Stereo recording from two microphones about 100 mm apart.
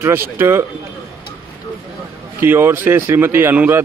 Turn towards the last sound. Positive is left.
turn(degrees=-20)  # may be behind; listen again after turning